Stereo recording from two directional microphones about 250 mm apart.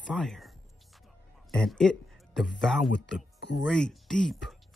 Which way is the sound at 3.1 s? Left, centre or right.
Left.